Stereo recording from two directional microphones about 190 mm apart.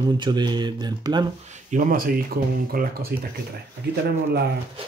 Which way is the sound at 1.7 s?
45° right (ahead or behind).